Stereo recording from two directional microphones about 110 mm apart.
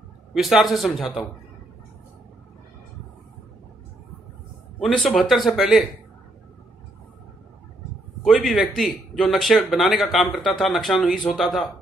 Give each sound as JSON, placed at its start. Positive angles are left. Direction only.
{"t": 0.3, "sound": "speech", "side_deg": 0}
{"t": 4.7, "sound": "speech", "side_deg": 0}
{"t": 8.2, "sound": "speech", "side_deg": 0}